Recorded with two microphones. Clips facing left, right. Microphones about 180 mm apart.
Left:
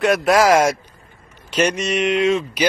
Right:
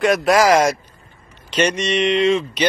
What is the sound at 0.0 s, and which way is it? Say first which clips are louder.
Speech: even; centre (ahead or behind).